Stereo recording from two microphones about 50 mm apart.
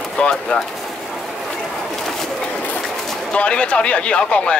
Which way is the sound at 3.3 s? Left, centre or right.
Left.